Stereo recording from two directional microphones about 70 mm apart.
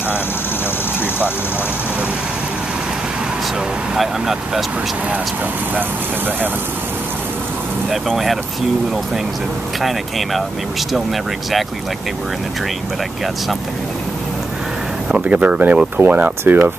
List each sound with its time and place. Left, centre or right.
3.9 s speech: centre
5.8 s speech: right
9.8 s speech: centre
15.0 s speech: centre